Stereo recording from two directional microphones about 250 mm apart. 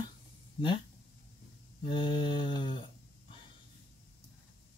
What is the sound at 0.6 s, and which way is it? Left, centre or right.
Speech, centre.